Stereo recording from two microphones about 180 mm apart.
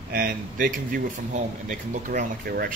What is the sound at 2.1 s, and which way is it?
Speech, 55° right (ahead or behind).